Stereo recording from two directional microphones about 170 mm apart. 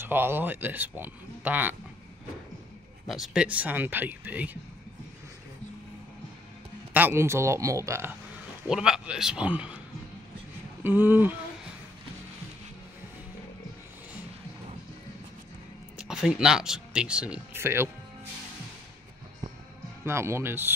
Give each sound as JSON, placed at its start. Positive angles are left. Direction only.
{"t": 0.0, "sound": "speech", "side_deg": -10}
{"t": 3.1, "sound": "speech", "side_deg": -5}
{"t": 6.9, "sound": "speech", "side_deg": -10}
{"t": 8.6, "sound": "a man's voice", "side_deg": -5}
{"t": 10.8, "sound": "speech", "side_deg": -10}
{"t": 16.0, "sound": "speech", "side_deg": -5}
{"t": 20.1, "sound": "speech", "side_deg": -15}